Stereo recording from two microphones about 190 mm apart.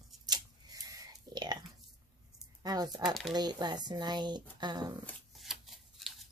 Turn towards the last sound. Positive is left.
turn(degrees=0)  # may be behind; listen again after turning